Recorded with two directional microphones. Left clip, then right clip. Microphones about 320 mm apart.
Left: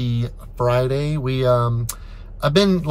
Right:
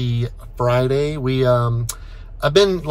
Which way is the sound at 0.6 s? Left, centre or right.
Centre.